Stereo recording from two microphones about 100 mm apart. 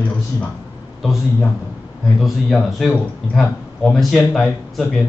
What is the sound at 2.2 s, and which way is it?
A man's voice, centre (ahead or behind).